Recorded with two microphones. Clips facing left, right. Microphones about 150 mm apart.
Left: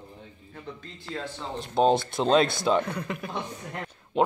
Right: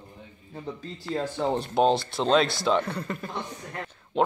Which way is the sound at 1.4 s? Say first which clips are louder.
Right 9 dB; 65° right (ahead or behind).